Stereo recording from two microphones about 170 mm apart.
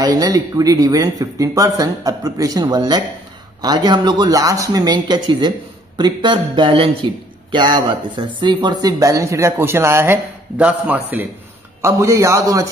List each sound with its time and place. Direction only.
0.0 s a man's voice: 20° right (ahead or behind)